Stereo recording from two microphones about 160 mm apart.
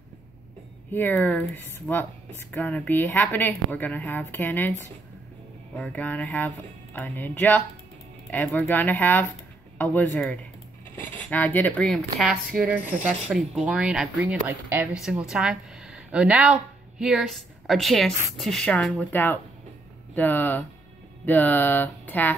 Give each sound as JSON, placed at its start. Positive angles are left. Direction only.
{"t": 0.9, "sound": "speech", "side_deg": 10}
{"t": 5.8, "sound": "a woman's voice", "side_deg": 10}